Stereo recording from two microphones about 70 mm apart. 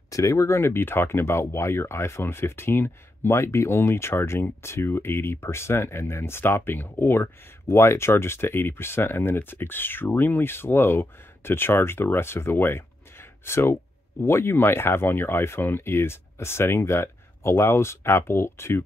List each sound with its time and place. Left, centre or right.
0.1 s speech: left